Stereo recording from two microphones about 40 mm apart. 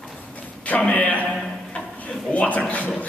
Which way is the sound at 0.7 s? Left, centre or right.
Left.